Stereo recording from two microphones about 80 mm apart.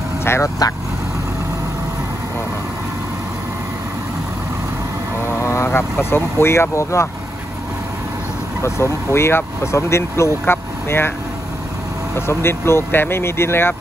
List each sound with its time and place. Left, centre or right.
0.2 s speech: left
5.4 s speech: left
8.6 s speech: left
12.3 s speech: left